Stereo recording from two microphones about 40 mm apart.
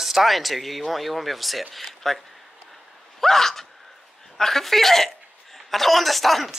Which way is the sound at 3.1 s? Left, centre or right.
Centre.